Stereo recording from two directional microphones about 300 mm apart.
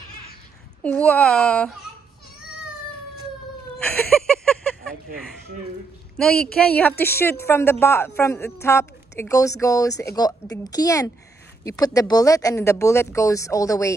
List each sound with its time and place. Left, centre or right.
0.8 s speech: centre
3.8 s a sound: centre
6.2 s a woman's voice: centre